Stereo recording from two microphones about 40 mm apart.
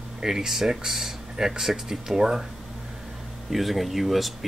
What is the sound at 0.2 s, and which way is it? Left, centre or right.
Speech, centre.